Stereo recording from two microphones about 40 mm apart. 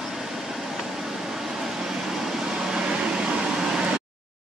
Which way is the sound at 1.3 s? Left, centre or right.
Centre.